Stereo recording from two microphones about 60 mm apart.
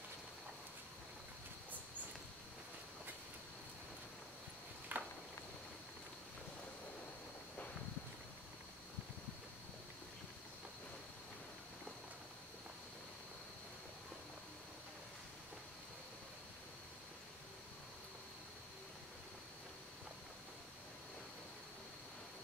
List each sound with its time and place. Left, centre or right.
4.9 s walk: right